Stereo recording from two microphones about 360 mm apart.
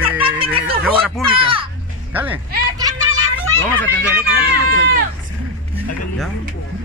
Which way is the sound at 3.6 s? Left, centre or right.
Centre.